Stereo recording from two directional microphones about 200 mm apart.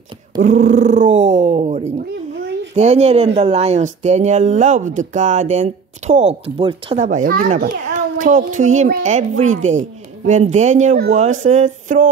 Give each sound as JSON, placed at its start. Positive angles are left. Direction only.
{"t": 0.4, "sound": "speech", "side_deg": -35}
{"t": 7.1, "sound": "speech", "side_deg": -40}